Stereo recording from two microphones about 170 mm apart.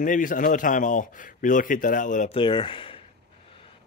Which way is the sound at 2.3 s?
30° left (ahead or behind).